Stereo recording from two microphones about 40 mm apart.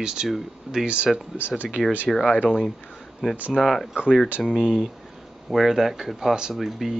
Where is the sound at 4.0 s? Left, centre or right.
Right.